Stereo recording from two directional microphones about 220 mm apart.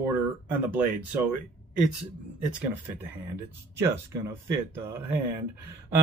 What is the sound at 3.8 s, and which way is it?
Speech, 15° right (ahead or behind).